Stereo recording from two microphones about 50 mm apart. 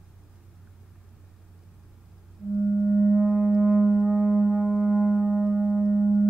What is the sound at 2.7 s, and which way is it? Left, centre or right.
Singing bowl, centre.